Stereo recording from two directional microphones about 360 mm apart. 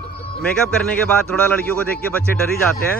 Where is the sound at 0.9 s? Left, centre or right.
Centre.